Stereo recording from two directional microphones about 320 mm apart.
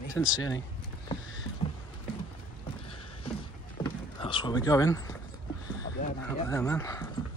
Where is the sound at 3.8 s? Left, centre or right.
Centre.